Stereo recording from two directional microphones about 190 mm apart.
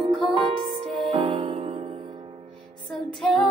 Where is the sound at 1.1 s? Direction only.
25° right (ahead or behind).